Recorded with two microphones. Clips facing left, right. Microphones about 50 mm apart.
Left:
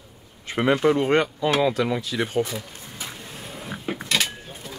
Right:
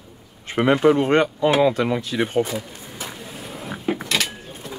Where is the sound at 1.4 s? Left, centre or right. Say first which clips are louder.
Right 6 dB; centre.